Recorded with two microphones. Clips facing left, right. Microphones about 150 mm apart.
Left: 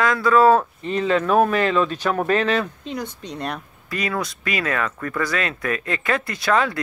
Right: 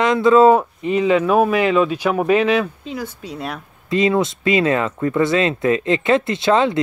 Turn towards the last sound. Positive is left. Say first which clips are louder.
# right 5 dB
turn(degrees=-25)  # may be behind; listen again after turning